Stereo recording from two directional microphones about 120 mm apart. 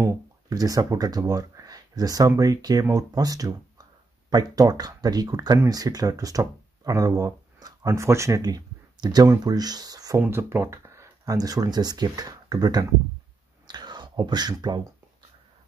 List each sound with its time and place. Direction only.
0.0 s speech: 25° right (ahead or behind)
10.2 s speech: 20° right (ahead or behind)
13.7 s whispering: 40° right (ahead or behind)